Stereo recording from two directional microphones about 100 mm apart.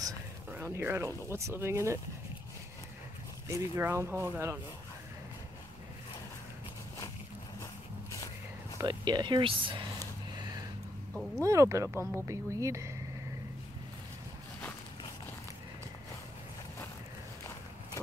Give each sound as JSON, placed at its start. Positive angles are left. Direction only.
{"t": 0.6, "sound": "speech", "side_deg": -25}
{"t": 3.4, "sound": "speech", "side_deg": -30}
{"t": 8.8, "sound": "speech", "side_deg": -45}
{"t": 9.9, "sound": "a sound", "side_deg": -35}
{"t": 11.4, "sound": "speech", "side_deg": -30}